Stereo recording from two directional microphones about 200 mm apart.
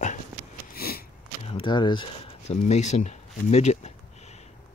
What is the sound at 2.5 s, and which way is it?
Speech, 35° left (ahead or behind).